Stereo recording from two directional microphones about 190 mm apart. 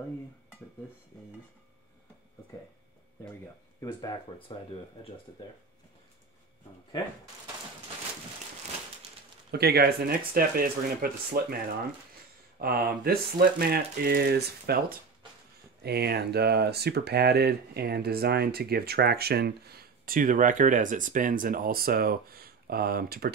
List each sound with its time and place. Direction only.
3.8 s speech: 25° left (ahead or behind)
9.5 s speech: 55° right (ahead or behind)
12.5 s speech: 50° right (ahead or behind)